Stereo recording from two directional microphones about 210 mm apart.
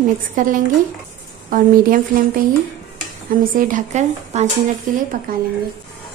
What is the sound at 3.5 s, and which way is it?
A woman's voice, 40° right (ahead or behind).